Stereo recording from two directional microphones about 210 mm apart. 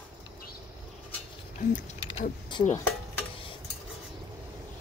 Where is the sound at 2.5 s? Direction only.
20° left (ahead or behind).